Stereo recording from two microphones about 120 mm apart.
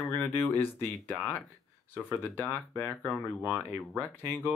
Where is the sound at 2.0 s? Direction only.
15° left (ahead or behind).